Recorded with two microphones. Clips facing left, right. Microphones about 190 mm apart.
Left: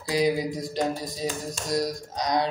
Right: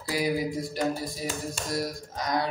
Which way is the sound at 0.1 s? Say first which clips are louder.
Left 3 dB; 20° left (ahead or behind).